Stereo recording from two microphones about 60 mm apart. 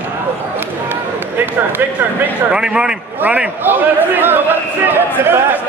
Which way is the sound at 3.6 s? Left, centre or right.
Right.